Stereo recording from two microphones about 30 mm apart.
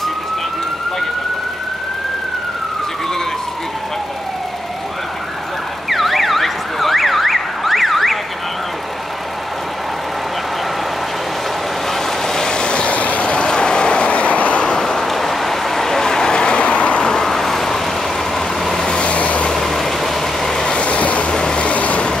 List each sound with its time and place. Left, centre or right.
5.9 s car alarm: centre
11.9 s vehicle: centre; by 12.9 s left
12.9 s vehicle: left
13.2 s vehicle: left
14.8 s vehicle: centre
15.0 s vehicle: centre; by 17.0 s left
17.0 s vehicle: centre
18.9 s vehicle: left
19.5 s vehicle: centre
20.5 s vehicle: left
20.8 s vehicle: left
21.3 s vehicle: left
21.5 s vehicle: left